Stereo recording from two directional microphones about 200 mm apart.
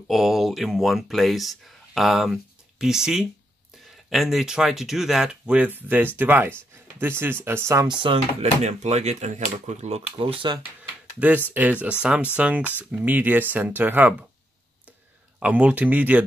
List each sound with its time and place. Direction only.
0.1 s speech: centre (ahead or behind); by 10.6 s 25° right (ahead or behind)
10.8 s speech: 5° right (ahead or behind)
15.3 s speech: 5° right (ahead or behind)